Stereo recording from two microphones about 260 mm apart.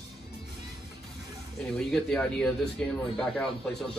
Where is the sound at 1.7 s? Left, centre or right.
Centre.